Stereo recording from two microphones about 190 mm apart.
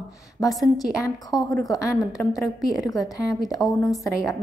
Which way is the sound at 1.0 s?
20° left (ahead or behind).